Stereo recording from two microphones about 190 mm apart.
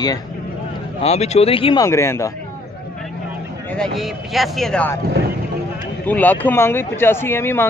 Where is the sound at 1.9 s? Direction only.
15° left (ahead or behind).